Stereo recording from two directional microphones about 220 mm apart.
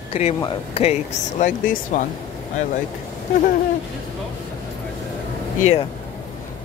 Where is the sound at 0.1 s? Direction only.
30° left (ahead or behind).